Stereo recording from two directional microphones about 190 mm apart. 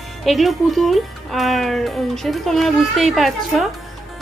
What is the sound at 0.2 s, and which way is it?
Speech, centre (ahead or behind).